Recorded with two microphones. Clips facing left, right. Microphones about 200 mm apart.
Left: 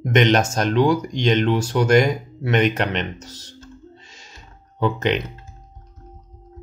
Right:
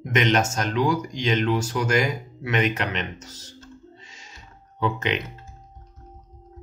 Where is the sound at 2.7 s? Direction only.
35° left (ahead or behind).